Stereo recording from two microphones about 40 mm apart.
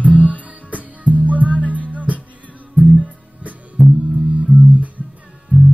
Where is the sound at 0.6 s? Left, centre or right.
Right.